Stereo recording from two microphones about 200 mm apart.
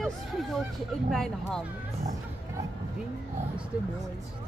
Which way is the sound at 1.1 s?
Centre (ahead or behind).